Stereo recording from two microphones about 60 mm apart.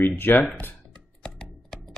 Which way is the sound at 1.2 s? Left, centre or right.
Centre.